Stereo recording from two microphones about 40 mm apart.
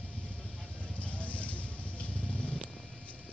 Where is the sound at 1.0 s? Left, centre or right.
Left.